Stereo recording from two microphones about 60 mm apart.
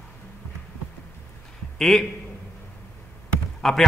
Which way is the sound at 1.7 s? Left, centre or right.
Centre.